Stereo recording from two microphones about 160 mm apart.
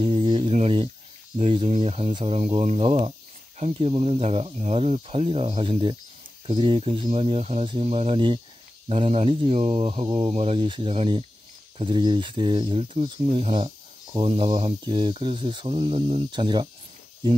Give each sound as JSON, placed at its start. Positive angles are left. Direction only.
{"t": 0.0, "sound": "speech", "side_deg": -35}